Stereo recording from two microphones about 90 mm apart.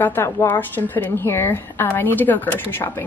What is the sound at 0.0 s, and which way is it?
A woman's voice, 25° left (ahead or behind).